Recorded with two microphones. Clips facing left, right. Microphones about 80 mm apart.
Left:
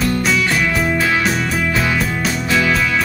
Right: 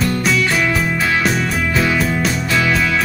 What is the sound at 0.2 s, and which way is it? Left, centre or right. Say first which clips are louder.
Music: even; centre.